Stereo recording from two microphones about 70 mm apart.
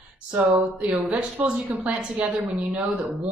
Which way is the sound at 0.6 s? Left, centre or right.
Centre.